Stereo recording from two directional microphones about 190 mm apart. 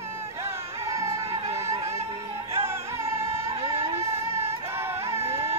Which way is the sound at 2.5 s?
15° right (ahead or behind).